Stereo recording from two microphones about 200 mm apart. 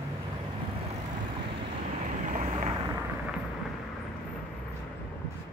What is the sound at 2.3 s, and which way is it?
Vehicle, 35° right (ahead or behind).